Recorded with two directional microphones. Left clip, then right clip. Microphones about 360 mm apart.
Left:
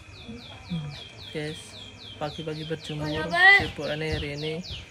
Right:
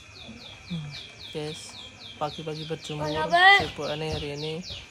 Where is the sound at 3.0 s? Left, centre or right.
Right.